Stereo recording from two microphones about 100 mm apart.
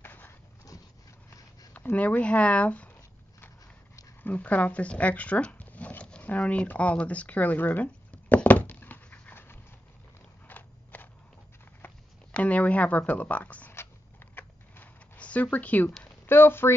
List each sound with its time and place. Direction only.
0.0 s a sound: 20° left (ahead or behind)
1.7 s speech: 15° left (ahead or behind)
3.3 s zipper: 20° left (ahead or behind)
10.5 s biting: 15° left (ahead or behind)
11.8 s a sound: 15° left (ahead or behind)
16.0 s speech: 20° left (ahead or behind)